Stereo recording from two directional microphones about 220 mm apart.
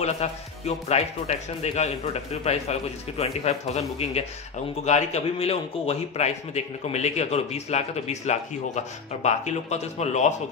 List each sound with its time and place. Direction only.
0.0 s a man's voice: 30° left (ahead or behind)
4.8 s a man's voice: 30° left (ahead or behind)